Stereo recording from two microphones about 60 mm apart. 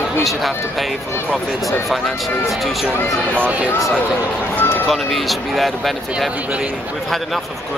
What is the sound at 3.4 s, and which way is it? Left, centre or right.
Speech, right.